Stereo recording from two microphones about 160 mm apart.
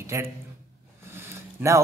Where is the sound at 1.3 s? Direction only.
15° right (ahead or behind).